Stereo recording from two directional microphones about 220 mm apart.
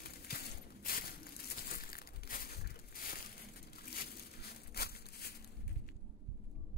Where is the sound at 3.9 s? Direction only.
45° left (ahead or behind).